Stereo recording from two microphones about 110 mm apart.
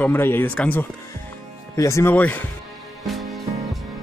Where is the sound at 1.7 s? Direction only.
30° left (ahead or behind).